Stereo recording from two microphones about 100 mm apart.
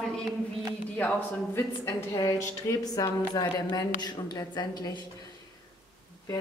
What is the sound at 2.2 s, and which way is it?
Speech, 40° left (ahead or behind).